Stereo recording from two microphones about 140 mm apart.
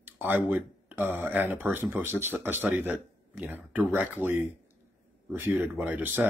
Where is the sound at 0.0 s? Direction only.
15° right (ahead or behind).